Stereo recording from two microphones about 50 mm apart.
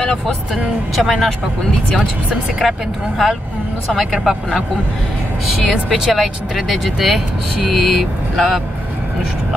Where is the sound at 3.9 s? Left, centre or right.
Centre.